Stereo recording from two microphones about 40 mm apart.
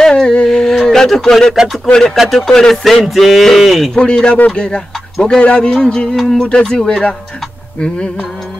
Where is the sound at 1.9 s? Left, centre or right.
Centre.